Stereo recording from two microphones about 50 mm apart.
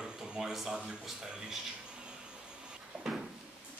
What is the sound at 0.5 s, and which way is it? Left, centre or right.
Speech, centre.